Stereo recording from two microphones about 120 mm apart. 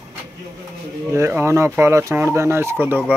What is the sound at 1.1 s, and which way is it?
Speech, 25° right (ahead or behind).